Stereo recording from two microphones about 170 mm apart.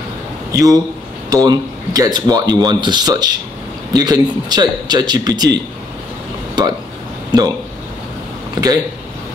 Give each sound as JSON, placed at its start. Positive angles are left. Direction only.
{"t": 0.5, "sound": "a man's voice", "side_deg": -20}
{"t": 7.3, "sound": "speech", "side_deg": -25}
{"t": 8.6, "sound": "speech", "side_deg": -25}